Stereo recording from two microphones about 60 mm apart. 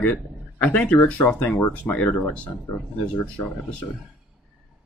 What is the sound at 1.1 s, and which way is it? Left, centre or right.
Speech, left.